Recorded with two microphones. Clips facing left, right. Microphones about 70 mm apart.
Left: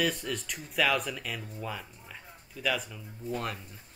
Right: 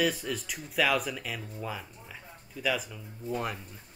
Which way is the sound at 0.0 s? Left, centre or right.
Centre.